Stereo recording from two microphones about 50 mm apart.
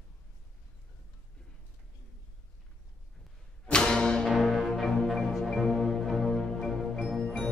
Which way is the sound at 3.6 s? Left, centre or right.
Centre.